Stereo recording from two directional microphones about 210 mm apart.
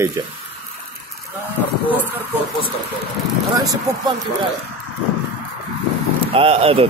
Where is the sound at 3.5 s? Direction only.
15° right (ahead or behind).